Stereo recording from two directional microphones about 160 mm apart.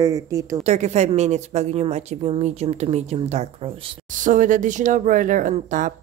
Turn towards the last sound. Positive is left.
turn(degrees=-55)  # may be behind; listen again after turning